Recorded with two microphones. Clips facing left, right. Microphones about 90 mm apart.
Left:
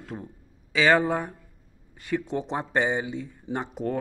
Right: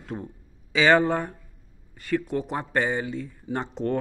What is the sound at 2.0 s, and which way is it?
Speech, 20° left (ahead or behind).